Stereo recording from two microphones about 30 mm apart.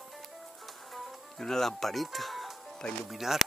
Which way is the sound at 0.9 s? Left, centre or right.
Centre.